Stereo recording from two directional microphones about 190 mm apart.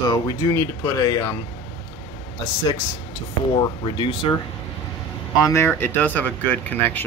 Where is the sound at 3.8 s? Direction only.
25° left (ahead or behind).